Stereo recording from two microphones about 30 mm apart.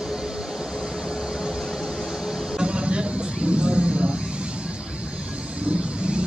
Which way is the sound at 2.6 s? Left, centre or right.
Right.